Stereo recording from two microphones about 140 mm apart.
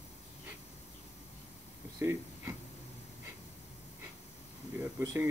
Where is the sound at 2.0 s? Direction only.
15° right (ahead or behind).